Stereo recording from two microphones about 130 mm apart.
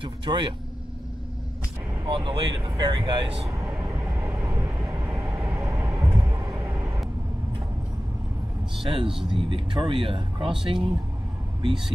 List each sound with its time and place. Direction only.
0.0 s speech: 35° right (ahead or behind)
2.0 s speech: 40° right (ahead or behind)
3.4 s vehicle: 25° right (ahead or behind)
6.4 s a sound: 25° right (ahead or behind)
8.7 s speech: 40° right (ahead or behind)